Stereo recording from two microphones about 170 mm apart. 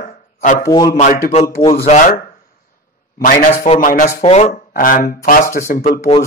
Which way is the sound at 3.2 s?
55° left (ahead or behind).